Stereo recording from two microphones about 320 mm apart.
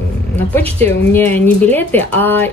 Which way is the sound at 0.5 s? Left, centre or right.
Centre.